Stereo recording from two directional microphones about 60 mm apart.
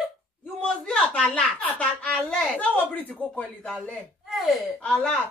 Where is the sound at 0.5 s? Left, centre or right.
Centre.